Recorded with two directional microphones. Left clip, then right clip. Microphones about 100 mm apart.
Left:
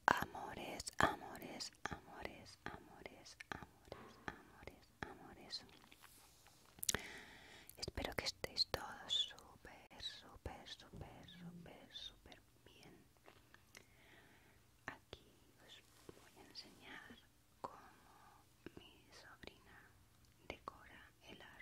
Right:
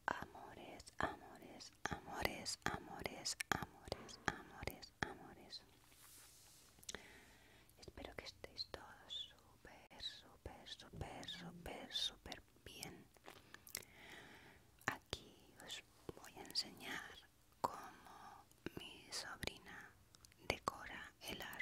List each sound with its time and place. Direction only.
0.0 s whispering: 35° left (ahead or behind)
2.0 s whispering: 35° right (ahead or behind)
5.1 s whispering: centre (ahead or behind)
5.4 s whispering: 20° left (ahead or behind)
6.9 s whispering: 40° left (ahead or behind)
9.7 s whispering: 10° left (ahead or behind)
11.1 s whispering: 40° right (ahead or behind)